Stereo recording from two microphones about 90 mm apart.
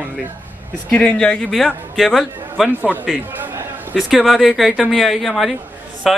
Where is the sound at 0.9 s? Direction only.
10° left (ahead or behind).